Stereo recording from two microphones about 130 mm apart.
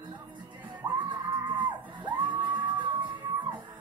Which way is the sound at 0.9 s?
35° right (ahead or behind).